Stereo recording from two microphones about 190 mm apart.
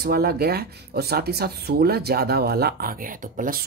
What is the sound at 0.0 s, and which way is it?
Speech, 55° right (ahead or behind).